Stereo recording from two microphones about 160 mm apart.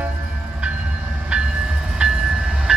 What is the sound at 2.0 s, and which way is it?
Train, 5° right (ahead or behind).